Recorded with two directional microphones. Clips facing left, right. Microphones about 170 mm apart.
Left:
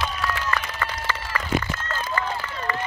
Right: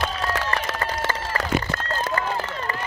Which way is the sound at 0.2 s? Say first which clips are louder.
Right 1 dB; 35° right (ahead or behind).